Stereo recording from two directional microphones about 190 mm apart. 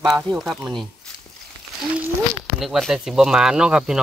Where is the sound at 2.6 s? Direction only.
Centre (ahead or behind).